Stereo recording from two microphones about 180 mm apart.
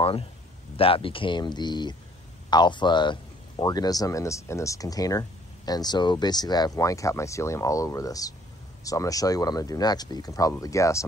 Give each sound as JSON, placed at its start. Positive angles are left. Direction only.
{"t": 0.0, "sound": "a man's voice", "side_deg": 30}